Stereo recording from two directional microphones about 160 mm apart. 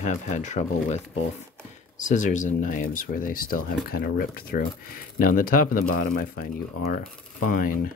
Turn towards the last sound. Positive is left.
turn(degrees=60)  # may be behind; listen again after turning